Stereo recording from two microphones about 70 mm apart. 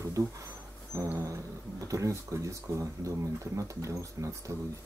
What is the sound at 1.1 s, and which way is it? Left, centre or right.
Speech, right.